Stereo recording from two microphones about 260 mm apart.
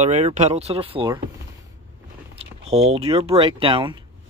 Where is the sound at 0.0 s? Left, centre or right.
Right.